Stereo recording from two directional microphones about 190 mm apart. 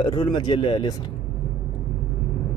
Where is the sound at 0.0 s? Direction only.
25° left (ahead or behind).